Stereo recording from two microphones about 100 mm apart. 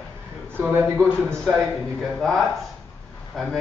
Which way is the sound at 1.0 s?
5° left (ahead or behind).